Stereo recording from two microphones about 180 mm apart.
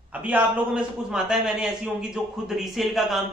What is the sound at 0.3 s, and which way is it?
A man's voice, 5° right (ahead or behind).